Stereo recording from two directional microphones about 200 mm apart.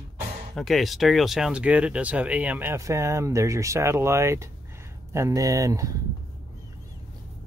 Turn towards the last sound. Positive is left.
turn(degrees=-15)  # may be behind; listen again after turning